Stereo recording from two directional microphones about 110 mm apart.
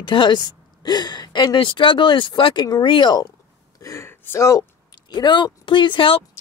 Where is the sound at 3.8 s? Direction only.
25° left (ahead or behind).